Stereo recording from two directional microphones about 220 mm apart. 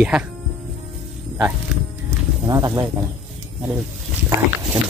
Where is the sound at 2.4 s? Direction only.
15° right (ahead or behind).